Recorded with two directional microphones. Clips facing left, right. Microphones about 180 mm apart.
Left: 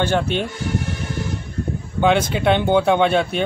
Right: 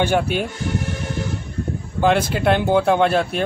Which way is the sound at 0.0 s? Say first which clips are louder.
Right 1 dB; 10° right (ahead or behind).